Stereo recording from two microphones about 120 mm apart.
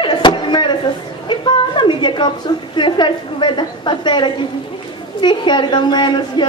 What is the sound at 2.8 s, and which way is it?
A woman's voice, 40° left (ahead or behind).